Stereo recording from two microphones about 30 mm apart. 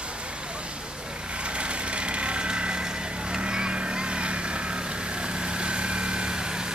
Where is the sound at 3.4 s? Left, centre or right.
Right.